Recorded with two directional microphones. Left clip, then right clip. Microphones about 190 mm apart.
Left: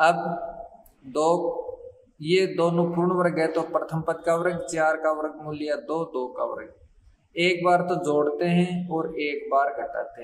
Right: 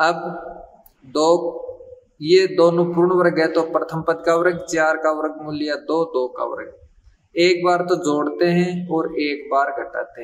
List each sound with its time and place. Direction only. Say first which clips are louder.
1.1 s a man's voice: right 5 dB; 10° left (ahead or behind)